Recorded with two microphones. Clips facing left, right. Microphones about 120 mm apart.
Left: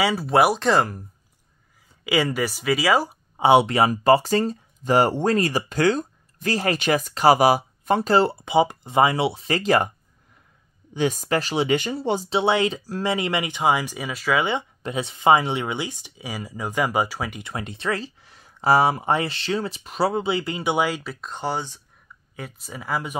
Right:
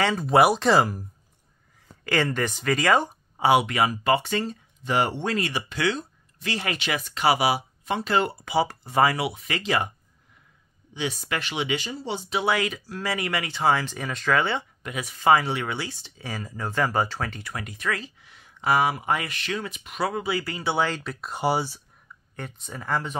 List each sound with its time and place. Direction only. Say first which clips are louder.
0.0 s speech: even; 5° left (ahead or behind)
2.0 s speech: left 2 dB; 10° left (ahead or behind)
3.3 s speech: left 4 dB; 25° left (ahead or behind)
9.6 s speech: left 6 dB; 45° left (ahead or behind)
10.9 s speech: left 7 dB; 45° left (ahead or behind)
11.7 s speech: left 7 dB; 55° left (ahead or behind)
12.2 s speech: left 2 dB; 30° left (ahead or behind)
14.8 s speech: left 5 dB; 30° left (ahead or behind); by 17.4 s 10° left (ahead or behind)
17.4 s speech: left 3 dB; 25° left (ahead or behind); by 21.8 s 10° right (ahead or behind)
22.3 s speech: left 1 dB; 5° left (ahead or behind)